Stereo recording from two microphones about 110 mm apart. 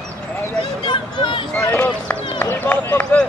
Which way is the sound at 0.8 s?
45° left (ahead or behind).